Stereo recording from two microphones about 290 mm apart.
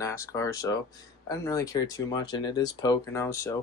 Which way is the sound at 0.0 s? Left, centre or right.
Centre.